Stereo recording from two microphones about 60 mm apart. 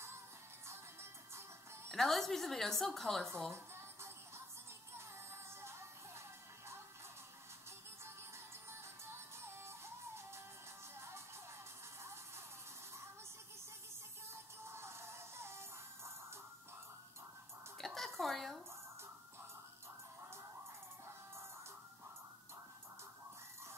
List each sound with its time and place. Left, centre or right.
1.9 s a woman's voice: centre
3.5 s music: right
5.6 s music: right
8.6 s music: right
14.7 s music: right
17.7 s a sound: centre